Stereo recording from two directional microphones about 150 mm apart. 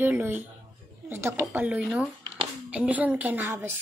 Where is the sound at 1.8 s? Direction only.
Centre (ahead or behind).